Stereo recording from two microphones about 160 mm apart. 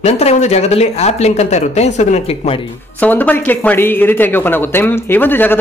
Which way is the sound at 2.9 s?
10° left (ahead or behind).